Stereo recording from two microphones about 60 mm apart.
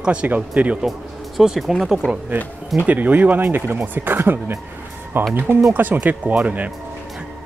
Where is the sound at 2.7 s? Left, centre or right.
Right.